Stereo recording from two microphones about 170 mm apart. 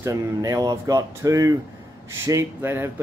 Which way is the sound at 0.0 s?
20° right (ahead or behind).